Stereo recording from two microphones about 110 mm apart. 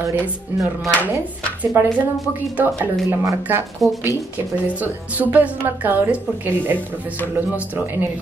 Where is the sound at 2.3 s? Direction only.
15° right (ahead or behind).